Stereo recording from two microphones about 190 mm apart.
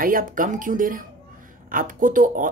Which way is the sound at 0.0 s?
45° right (ahead or behind).